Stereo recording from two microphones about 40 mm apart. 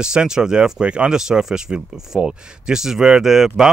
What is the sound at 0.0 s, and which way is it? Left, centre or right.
Speech, centre.